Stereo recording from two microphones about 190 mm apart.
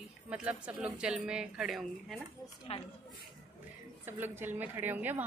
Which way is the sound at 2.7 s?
30° left (ahead or behind).